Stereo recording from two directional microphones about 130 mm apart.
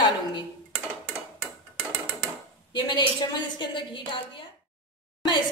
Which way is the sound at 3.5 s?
40° left (ahead or behind).